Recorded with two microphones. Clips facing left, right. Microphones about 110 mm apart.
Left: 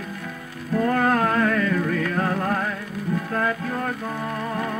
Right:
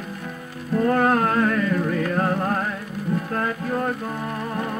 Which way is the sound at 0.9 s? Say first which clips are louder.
Right 1 dB; 25° right (ahead or behind).